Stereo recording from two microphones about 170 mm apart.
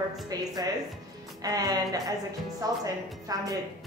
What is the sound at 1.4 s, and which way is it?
A woman's voice, 20° right (ahead or behind).